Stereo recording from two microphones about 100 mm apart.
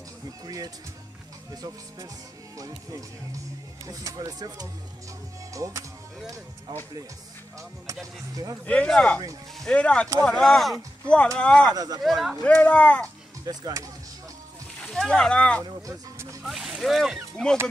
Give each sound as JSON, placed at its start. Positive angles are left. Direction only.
{"t": 1.5, "sound": "speech", "side_deg": -35}
{"t": 7.8, "sound": "speech", "side_deg": -35}
{"t": 8.6, "sound": "speech", "side_deg": 10}
{"t": 11.7, "sound": "speech", "side_deg": -40}
{"t": 12.0, "sound": "speech", "side_deg": 0}
{"t": 12.4, "sound": "speech", "side_deg": 15}
{"t": 13.5, "sound": "speech", "side_deg": -40}
{"t": 14.8, "sound": "speech", "side_deg": 5}
{"t": 16.4, "sound": "speech", "side_deg": -5}